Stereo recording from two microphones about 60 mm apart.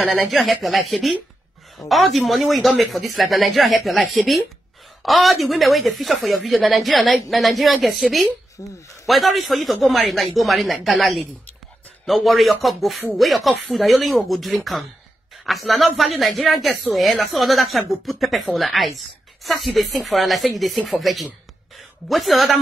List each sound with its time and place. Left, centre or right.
0.0 s a woman's voice: centre
8.5 s speech: left
9.0 s a woman's voice: centre